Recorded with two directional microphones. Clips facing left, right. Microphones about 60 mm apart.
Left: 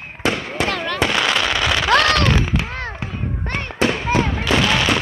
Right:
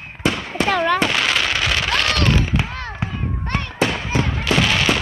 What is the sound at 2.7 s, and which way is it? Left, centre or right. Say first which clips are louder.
Fireworks: even; left.